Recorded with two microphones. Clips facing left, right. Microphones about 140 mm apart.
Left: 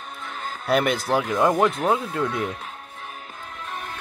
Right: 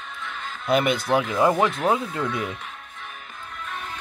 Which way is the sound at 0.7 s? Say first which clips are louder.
Even; centre (ahead or behind).